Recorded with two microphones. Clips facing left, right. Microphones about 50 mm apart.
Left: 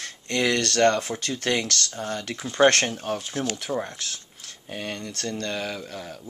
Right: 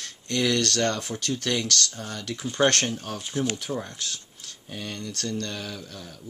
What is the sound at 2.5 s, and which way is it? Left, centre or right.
Speech, left.